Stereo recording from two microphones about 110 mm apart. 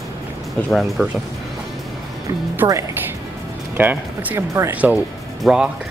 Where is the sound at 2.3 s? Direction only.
25° right (ahead or behind).